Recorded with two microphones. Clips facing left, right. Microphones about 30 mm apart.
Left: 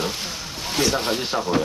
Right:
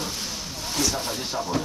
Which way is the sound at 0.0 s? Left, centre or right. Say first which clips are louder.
Left 4 dB; left.